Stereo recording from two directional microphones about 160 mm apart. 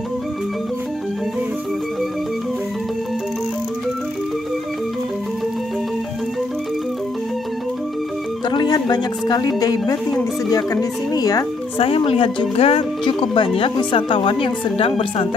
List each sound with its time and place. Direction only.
8.5 s speech: 25° left (ahead or behind)
11.8 s speech: 35° left (ahead or behind)